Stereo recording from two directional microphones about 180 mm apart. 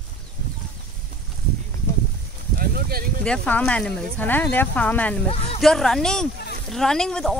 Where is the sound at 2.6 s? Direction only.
55° right (ahead or behind).